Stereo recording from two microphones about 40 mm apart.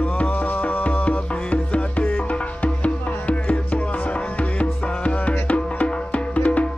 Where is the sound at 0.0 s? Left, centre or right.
Left.